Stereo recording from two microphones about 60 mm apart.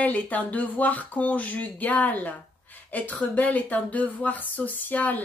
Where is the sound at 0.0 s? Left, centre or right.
Left.